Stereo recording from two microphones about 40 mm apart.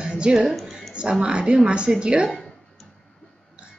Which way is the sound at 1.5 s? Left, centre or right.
Right.